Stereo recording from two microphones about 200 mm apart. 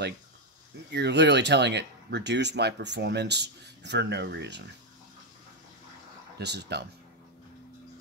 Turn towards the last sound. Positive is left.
turn(degrees=-55)  # may be behind; listen again after turning